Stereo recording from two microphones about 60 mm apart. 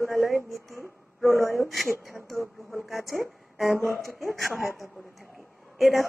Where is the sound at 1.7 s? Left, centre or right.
Centre.